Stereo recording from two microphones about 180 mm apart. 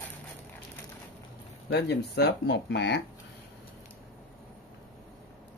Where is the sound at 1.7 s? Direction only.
70° left (ahead or behind).